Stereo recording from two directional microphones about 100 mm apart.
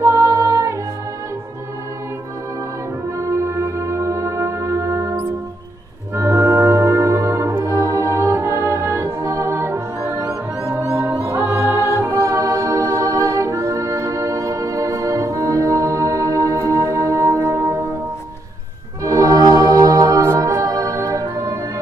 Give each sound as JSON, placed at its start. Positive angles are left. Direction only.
{"t": 0.0, "sound": "music", "side_deg": -25}
{"t": 3.2, "sound": "music", "side_deg": -30}
{"t": 19.0, "sound": "music", "side_deg": -35}